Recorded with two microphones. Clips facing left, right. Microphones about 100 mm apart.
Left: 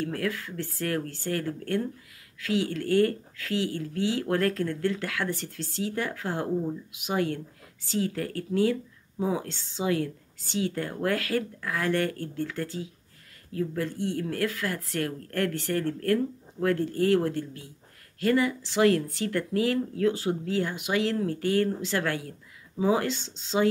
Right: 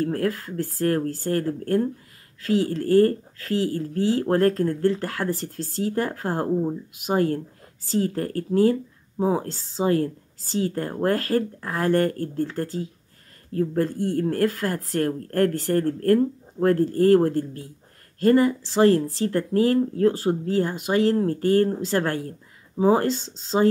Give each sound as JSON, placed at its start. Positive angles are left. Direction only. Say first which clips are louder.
{"t": 0.0, "sound": "speech", "louder": "right 6 dB", "side_deg": -40}